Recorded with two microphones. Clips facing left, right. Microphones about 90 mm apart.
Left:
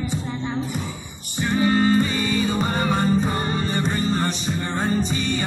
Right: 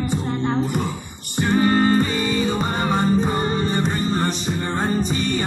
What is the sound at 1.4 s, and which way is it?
Music, 40° right (ahead or behind).